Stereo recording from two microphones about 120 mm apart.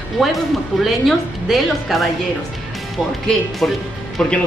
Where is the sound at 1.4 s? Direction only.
Centre (ahead or behind).